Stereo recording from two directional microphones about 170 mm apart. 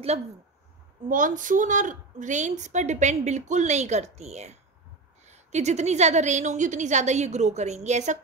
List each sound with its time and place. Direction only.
1.0 s a woman's voice: 50° right (ahead or behind)